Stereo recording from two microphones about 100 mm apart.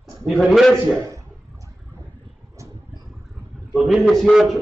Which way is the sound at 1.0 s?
35° right (ahead or behind).